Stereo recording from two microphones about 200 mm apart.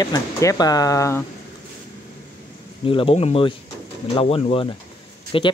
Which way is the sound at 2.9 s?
25° left (ahead or behind).